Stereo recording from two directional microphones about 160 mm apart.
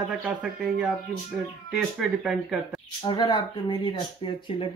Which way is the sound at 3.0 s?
25° left (ahead or behind).